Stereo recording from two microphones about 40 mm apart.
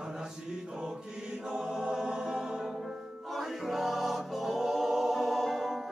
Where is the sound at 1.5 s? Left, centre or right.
Centre.